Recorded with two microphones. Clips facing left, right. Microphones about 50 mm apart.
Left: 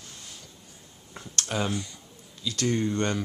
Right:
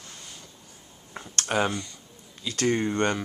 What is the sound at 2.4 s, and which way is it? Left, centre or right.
Speech, right.